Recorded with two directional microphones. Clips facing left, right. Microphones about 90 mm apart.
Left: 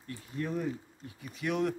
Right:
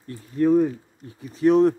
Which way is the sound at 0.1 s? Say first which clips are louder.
Right 16 dB; 40° right (ahead or behind).